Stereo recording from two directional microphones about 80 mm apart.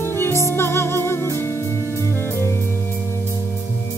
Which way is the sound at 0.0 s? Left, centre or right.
Left.